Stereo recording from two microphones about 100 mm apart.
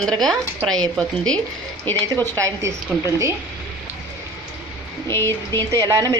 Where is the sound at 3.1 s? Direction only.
30° right (ahead or behind).